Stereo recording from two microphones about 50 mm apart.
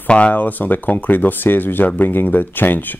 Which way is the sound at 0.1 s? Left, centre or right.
Left.